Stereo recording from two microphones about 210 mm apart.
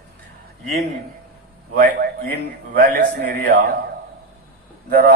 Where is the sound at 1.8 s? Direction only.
45° right (ahead or behind).